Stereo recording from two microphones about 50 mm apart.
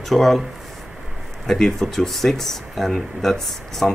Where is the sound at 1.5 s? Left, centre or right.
Centre.